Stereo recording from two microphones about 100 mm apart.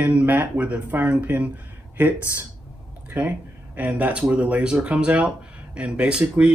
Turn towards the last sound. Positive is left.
turn(degrees=-10)  # may be behind; listen again after turning